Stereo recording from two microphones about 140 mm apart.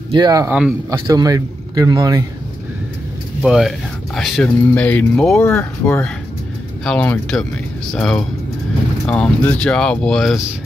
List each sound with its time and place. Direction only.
0.1 s a man's voice: 30° right (ahead or behind)
0.5 s speech: 5° right (ahead or behind)
0.8 s a man's voice: 25° right (ahead or behind)
3.4 s speech: 5° right (ahead or behind); by 6.0 s 20° left (ahead or behind)
6.8 s speech: 10° left (ahead or behind)